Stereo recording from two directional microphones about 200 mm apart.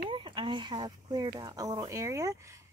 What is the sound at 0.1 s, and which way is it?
Speech, 25° right (ahead or behind).